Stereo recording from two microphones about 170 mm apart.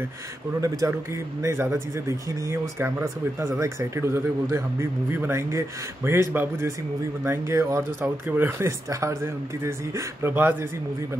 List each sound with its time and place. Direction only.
0.6 s speech: 20° right (ahead or behind)